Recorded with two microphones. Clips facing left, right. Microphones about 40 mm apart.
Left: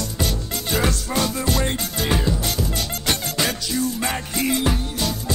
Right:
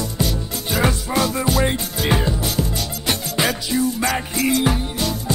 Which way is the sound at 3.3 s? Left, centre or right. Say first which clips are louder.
Right 3 dB; centre.